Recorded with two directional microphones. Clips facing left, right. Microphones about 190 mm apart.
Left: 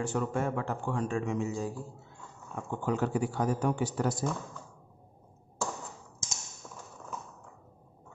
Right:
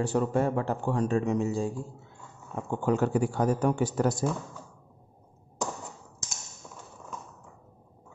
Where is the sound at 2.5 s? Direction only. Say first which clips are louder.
Right 5 dB; 45° right (ahead or behind).